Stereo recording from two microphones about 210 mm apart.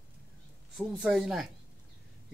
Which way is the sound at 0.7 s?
Centre (ahead or behind).